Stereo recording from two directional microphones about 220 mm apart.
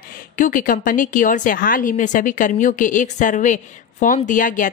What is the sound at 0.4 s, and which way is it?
A woman's voice, 35° left (ahead or behind).